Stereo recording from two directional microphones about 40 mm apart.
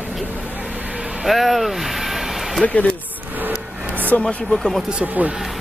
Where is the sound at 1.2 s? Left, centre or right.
Centre.